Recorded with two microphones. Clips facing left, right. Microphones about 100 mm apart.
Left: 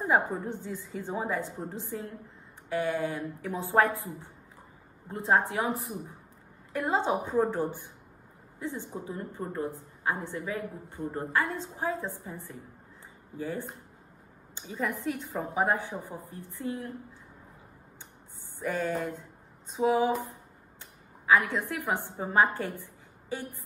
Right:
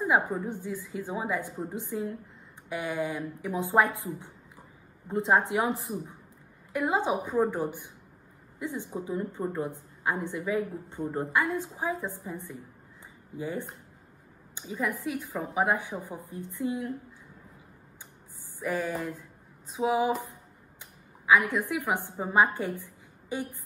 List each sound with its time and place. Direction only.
0.1 s a woman's voice: 10° right (ahead or behind)
6.7 s a woman's voice: 15° right (ahead or behind)
11.3 s a woman's voice: 10° right (ahead or behind)
15.7 s a woman's voice: 15° right (ahead or behind)
18.6 s a woman's voice: 5° right (ahead or behind)
20.8 s a sound: 15° right (ahead or behind)
21.5 s a woman's voice: 15° right (ahead or behind)